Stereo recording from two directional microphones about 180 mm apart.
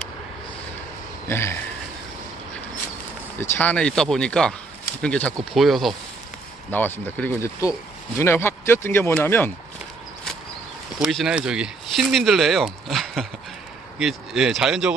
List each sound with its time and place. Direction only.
1.2 s a sound: 15° left (ahead or behind)
3.3 s speech: 10° left (ahead or behind)
6.7 s speech: 10° left (ahead or behind)
11.0 s speech: centre (ahead or behind)